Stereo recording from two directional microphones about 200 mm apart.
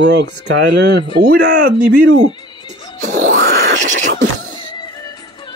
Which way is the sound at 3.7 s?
40° right (ahead or behind).